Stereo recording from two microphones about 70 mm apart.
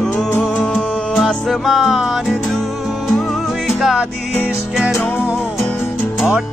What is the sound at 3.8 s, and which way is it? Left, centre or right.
Music, centre.